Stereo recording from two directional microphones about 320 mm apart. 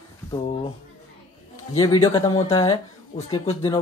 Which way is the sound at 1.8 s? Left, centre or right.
Centre.